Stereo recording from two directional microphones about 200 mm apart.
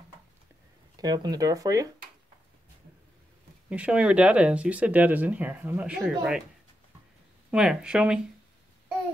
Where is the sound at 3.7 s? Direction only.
5° right (ahead or behind).